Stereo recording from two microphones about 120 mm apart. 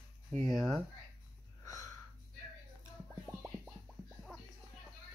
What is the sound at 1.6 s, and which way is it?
Wheeze, 25° left (ahead or behind).